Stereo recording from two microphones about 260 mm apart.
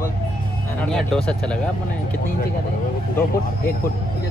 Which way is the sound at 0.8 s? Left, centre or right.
Centre.